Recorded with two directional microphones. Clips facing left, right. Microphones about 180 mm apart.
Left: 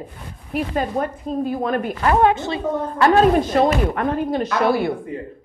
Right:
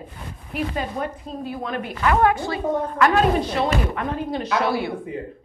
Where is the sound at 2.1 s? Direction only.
20° left (ahead or behind).